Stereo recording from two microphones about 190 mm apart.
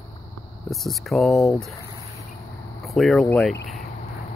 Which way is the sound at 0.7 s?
Centre (ahead or behind).